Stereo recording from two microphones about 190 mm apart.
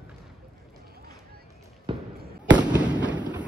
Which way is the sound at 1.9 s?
25° right (ahead or behind).